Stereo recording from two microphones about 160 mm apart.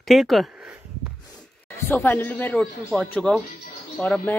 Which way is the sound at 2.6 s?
Centre (ahead or behind).